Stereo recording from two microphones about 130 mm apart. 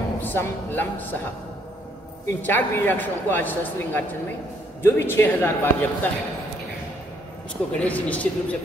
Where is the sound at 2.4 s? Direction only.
15° left (ahead or behind).